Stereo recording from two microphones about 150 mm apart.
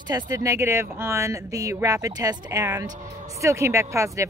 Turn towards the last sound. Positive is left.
turn(degrees=-20)  # may be behind; listen again after turning